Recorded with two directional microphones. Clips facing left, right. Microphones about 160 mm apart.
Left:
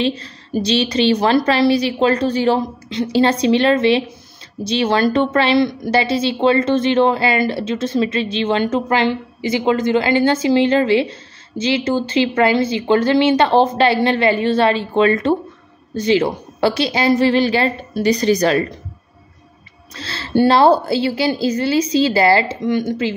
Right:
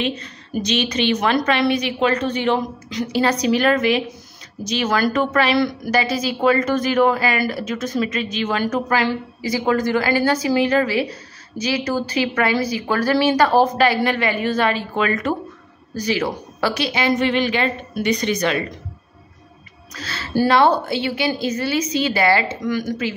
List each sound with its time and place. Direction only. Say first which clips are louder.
0.0 s a woman's voice: left 4 dB; 30° left (ahead or behind)
19.9 s a woman's voice: left 4 dB; 30° left (ahead or behind)